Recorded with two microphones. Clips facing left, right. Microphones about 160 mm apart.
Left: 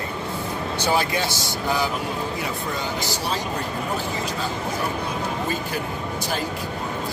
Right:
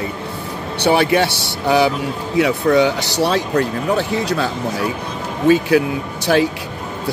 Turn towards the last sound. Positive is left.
turn(degrees=-75)  # may be behind; listen again after turning